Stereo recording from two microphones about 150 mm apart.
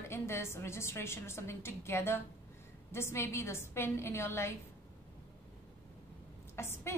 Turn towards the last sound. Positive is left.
turn(degrees=15)  # may be behind; listen again after turning